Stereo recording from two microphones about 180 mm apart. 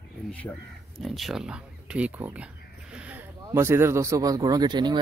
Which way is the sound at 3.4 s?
15° right (ahead or behind).